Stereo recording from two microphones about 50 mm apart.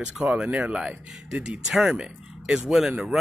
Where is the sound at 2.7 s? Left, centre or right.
Centre.